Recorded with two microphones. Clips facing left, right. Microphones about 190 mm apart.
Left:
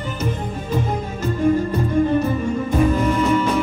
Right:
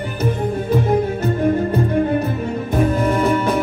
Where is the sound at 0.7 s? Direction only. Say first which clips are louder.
Right 6 dB; 60° right (ahead or behind).